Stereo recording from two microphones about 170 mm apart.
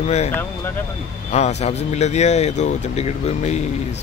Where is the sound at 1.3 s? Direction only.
40° left (ahead or behind).